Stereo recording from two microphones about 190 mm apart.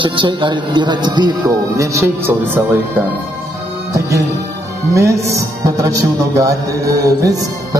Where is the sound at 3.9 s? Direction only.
15° right (ahead or behind).